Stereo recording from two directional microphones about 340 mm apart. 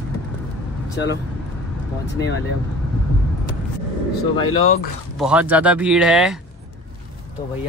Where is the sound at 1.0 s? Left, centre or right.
Left.